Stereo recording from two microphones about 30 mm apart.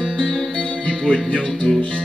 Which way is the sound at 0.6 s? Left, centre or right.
Left.